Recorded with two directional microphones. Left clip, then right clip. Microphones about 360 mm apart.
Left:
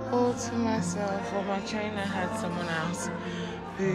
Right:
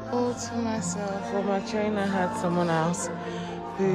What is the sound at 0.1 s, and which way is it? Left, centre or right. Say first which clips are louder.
Music: left 1 dB; centre.